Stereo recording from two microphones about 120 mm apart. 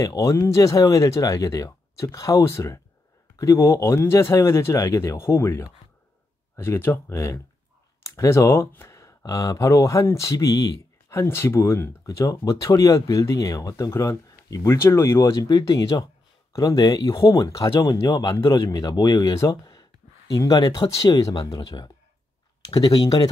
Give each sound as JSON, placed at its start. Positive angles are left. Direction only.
{"t": 0.0, "sound": "speech", "side_deg": 30}